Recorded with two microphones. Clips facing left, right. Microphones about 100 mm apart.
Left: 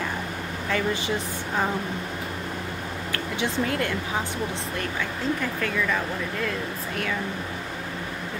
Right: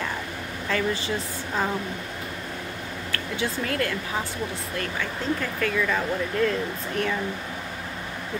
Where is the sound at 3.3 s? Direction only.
20° left (ahead or behind).